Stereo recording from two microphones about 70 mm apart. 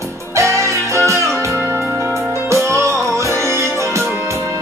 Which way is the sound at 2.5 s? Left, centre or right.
Right.